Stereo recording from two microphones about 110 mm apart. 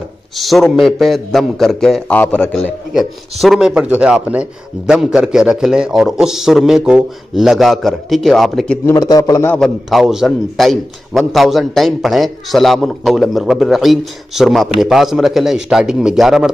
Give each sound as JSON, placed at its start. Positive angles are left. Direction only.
{"t": 0.4, "sound": "a man's voice", "side_deg": 0}
{"t": 2.9, "sound": "a man's voice", "side_deg": 0}
{"t": 8.9, "sound": "a man's voice", "side_deg": 35}
{"t": 9.6, "sound": "a man's voice", "side_deg": 0}